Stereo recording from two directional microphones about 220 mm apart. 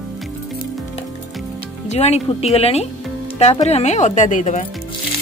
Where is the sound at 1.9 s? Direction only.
30° left (ahead or behind).